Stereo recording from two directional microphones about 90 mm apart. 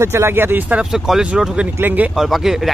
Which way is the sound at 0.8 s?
5° right (ahead or behind).